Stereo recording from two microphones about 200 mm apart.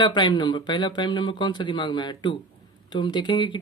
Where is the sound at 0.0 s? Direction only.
20° left (ahead or behind).